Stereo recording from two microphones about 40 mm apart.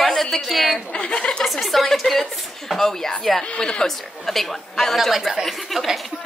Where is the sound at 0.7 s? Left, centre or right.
Left.